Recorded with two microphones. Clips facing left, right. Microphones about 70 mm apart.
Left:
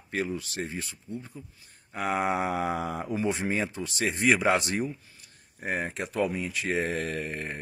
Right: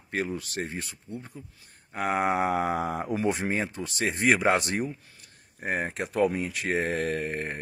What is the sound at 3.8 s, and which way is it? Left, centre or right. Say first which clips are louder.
Speech: even; right.